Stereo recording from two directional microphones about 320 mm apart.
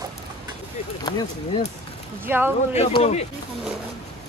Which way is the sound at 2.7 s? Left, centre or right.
Centre.